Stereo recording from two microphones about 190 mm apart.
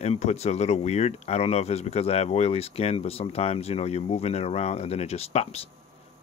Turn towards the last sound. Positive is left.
turn(degrees=35)  # may be behind; listen again after turning